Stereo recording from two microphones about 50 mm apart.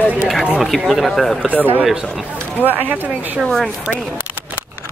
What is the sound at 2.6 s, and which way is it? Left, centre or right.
Speech, left.